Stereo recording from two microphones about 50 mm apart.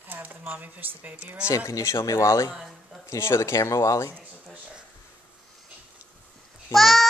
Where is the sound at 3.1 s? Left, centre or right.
Left.